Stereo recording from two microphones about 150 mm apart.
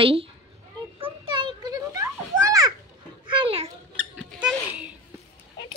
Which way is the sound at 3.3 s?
40° right (ahead or behind).